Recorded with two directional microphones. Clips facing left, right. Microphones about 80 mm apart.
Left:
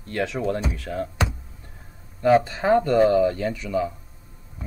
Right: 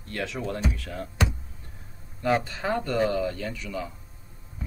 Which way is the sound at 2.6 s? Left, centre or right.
Left.